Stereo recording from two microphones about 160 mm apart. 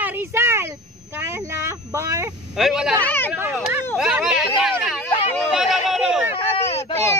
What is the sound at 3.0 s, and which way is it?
Speech, 10° left (ahead or behind).